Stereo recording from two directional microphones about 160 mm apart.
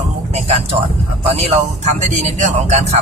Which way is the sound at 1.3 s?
40° right (ahead or behind).